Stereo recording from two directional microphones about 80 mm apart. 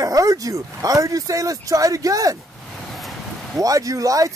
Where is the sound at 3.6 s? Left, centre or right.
Right.